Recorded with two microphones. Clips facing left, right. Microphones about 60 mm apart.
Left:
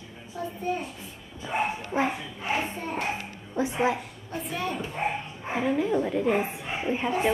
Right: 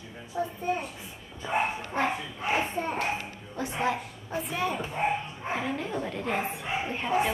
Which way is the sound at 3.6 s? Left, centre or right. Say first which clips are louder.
Left 4 dB; centre.